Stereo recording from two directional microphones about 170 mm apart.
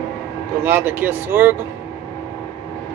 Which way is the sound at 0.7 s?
10° right (ahead or behind).